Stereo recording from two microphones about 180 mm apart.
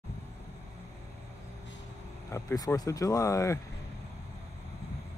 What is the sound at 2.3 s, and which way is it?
Speech, 20° left (ahead or behind).